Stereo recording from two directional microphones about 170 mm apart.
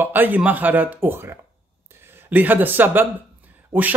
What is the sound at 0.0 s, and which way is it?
Speech, 10° right (ahead or behind).